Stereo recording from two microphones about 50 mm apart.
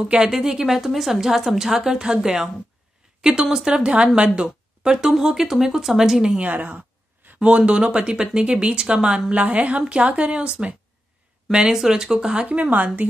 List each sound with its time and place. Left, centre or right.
0.0 s a woman's voice: centre
6.3 s a woman's voice: right
9.3 s a woman's voice: right; by 12.4 s centre
12.4 s a woman's voice: right